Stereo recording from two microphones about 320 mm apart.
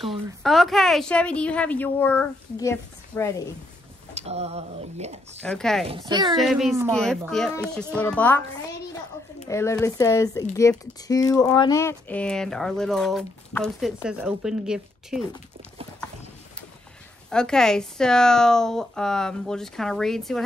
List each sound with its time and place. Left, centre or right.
0.0 s speech: centre
4.1 s speech: centre
5.4 s speech: centre
5.9 s speech: centre
6.3 s speech: centre
9.5 s speech: centre
17.3 s speech: centre